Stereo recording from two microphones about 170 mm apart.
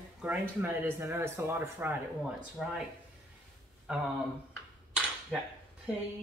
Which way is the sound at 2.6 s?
5° right (ahead or behind).